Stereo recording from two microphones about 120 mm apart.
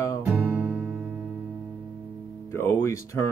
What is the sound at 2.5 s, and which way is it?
Music, 25° left (ahead or behind).